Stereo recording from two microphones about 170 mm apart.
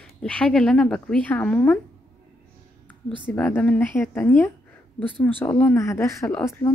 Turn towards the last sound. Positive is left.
turn(degrees=15)  # may be behind; listen again after turning